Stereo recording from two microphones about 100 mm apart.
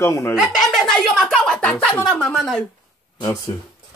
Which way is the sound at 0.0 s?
30° left (ahead or behind).